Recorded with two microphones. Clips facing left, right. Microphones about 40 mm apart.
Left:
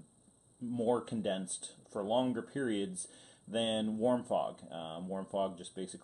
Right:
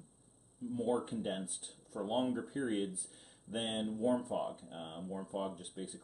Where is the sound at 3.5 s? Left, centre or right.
Left.